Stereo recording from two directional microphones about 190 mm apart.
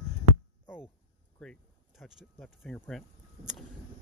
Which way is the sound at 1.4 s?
Centre (ahead or behind).